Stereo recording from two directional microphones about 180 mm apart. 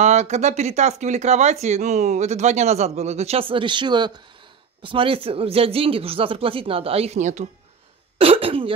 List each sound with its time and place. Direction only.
0.0 s speech: 40° right (ahead or behind)
8.2 s speech: 30° right (ahead or behind)